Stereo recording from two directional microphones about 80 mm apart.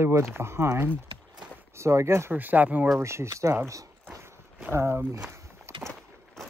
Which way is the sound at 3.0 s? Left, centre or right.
Right.